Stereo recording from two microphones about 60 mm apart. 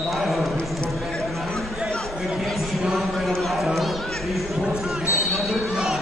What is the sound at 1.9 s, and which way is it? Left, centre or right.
Chatter, centre.